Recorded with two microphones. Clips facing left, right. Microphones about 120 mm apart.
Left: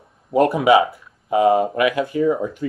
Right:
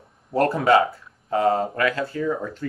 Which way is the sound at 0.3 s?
15° left (ahead or behind).